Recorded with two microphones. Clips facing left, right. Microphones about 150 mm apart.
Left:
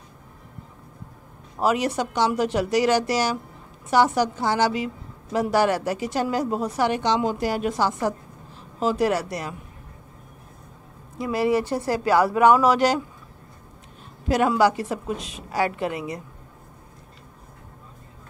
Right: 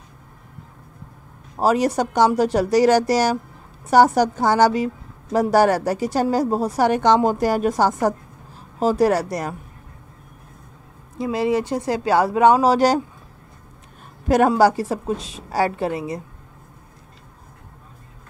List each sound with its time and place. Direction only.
1.6 s a woman's voice: 40° right (ahead or behind)
11.1 s speech: 25° right (ahead or behind)
12.7 s a woman's voice: 40° right (ahead or behind)
14.2 s a woman's voice: 45° right (ahead or behind)
14.5 s a woman's voice: 35° right (ahead or behind)